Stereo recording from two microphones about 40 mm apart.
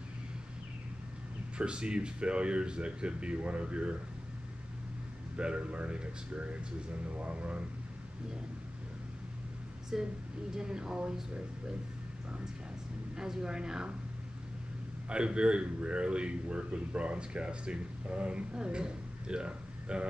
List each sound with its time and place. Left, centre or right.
1.6 s a man's voice: right
5.4 s a man's voice: right
9.9 s a man's voice: centre
13.1 s a man's voice: centre
15.0 s a man's voice: right